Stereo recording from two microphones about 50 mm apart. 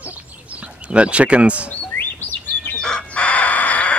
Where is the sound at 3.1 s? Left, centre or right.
Left.